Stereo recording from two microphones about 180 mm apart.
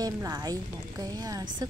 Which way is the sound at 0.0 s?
20° right (ahead or behind).